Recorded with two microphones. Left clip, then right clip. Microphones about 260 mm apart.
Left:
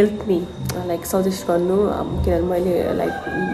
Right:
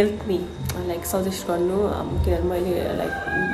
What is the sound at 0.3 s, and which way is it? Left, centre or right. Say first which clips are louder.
Speech: left 4 dB; right.